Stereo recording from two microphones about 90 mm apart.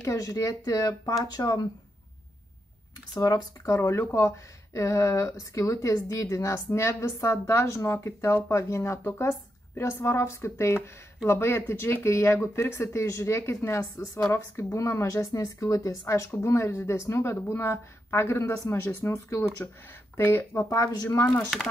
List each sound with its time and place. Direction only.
0.0 s speech: 40° left (ahead or behind)
3.2 s speech: 45° left (ahead or behind)
20.7 s speech: 40° left (ahead or behind)